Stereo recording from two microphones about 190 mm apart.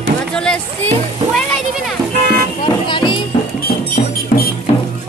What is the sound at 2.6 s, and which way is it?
Music, 25° left (ahead or behind).